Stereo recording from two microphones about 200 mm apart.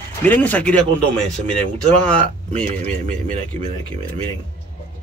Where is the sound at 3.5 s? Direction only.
35° right (ahead or behind).